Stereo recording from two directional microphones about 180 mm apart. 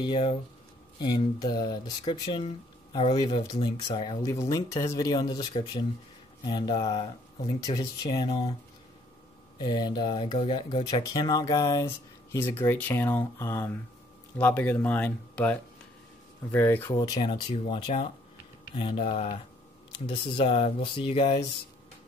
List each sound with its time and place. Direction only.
0.0 s speech: 30° left (ahead or behind)
9.6 s speech: 25° left (ahead or behind)